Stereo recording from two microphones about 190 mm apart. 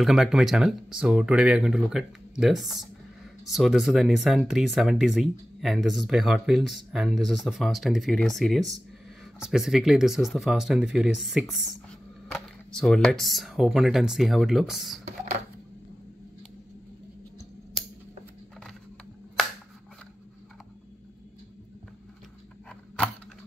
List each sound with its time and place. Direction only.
0.0 s speech: centre (ahead or behind)